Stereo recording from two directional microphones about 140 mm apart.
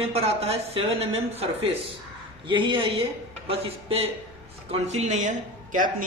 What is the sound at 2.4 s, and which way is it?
Speech, 35° right (ahead or behind).